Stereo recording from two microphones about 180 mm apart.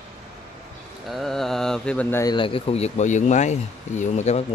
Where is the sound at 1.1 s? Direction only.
Centre (ahead or behind).